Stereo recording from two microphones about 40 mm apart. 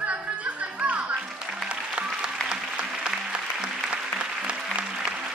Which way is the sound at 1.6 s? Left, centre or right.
Right.